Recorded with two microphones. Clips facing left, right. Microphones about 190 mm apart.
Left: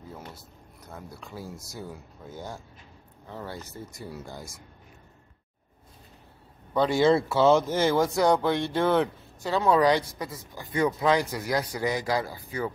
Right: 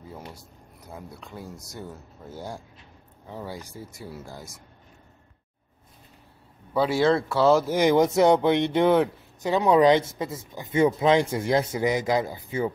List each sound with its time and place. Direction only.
0.1 s speech: 15° right (ahead or behind)
6.7 s speech: 5° right (ahead or behind)
7.7 s speech: 15° right (ahead or behind)